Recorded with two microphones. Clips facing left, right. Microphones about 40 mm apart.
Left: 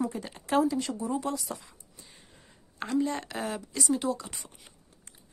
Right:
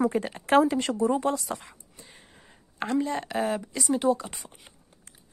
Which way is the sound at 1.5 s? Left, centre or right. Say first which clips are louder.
Right 5 dB; right.